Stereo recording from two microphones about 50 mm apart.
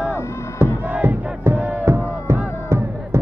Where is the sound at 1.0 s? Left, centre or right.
Right.